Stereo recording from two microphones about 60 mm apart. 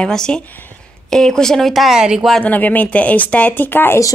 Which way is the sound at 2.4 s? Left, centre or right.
Left.